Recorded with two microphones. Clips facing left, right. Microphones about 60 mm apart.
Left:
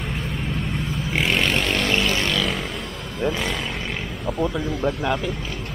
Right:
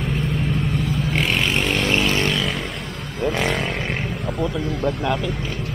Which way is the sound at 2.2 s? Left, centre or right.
Centre.